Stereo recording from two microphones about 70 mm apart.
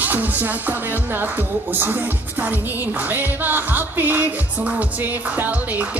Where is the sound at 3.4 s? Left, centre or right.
Right.